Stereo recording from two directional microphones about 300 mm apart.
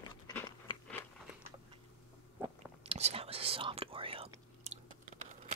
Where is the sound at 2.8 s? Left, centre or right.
Centre.